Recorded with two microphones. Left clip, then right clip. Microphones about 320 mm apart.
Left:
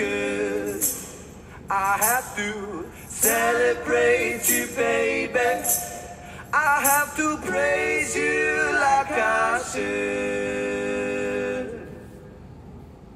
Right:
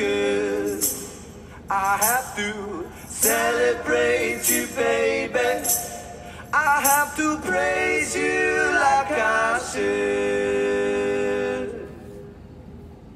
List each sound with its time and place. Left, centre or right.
0.0 s music: centre